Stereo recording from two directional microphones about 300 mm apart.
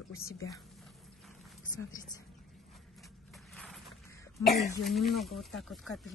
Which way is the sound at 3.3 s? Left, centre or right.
Centre.